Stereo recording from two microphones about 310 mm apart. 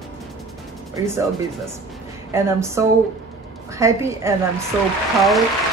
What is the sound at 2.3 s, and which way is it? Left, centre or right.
A woman's voice, centre.